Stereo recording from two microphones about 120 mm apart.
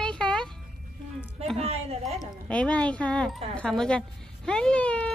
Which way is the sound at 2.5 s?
10° left (ahead or behind).